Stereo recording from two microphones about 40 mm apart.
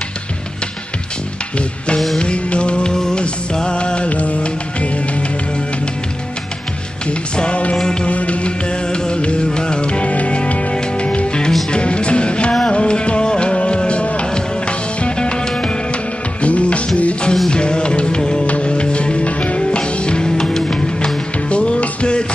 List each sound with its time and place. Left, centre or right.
2.1 s music: left
7.1 s music: left
8.1 s music: left